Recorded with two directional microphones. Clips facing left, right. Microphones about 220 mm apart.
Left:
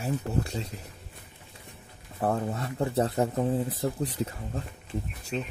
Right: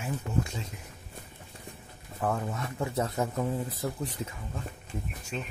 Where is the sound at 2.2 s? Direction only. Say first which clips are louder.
Left 3 dB; 35° left (ahead or behind).